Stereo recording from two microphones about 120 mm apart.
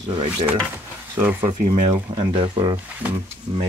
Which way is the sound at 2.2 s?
40° right (ahead or behind).